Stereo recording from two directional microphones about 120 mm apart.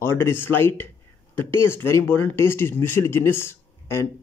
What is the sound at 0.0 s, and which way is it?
Speech, 20° left (ahead or behind).